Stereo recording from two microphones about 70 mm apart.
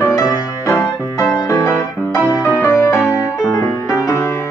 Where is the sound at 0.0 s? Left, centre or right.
Left.